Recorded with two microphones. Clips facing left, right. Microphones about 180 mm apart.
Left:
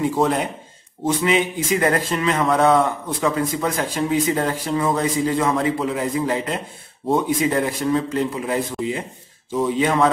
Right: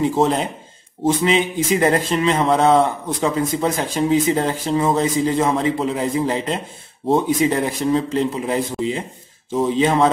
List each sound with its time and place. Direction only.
0.0 s speech: 25° right (ahead or behind)